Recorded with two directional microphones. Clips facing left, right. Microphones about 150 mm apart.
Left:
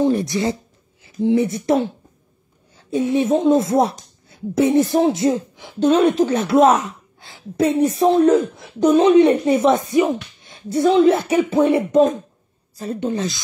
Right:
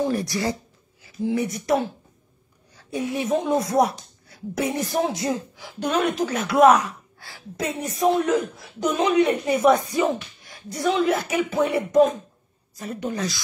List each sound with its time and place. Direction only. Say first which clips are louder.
0.0 s speech: left 6 dB; 25° left (ahead or behind)
4.3 s a sound: left 6 dB; 25° left (ahead or behind)
4.7 s speech: left 9 dB; 25° left (ahead or behind)